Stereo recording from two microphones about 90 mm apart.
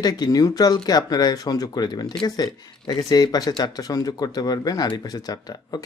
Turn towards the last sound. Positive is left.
turn(degrees=45)  # may be behind; listen again after turning